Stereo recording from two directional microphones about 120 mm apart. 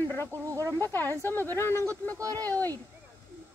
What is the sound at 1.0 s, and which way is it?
Speech, 15° left (ahead or behind).